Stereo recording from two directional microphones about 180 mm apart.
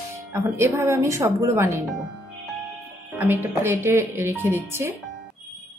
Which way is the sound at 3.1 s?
10° right (ahead or behind).